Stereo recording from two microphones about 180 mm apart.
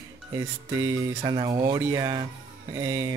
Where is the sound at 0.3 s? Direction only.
20° right (ahead or behind).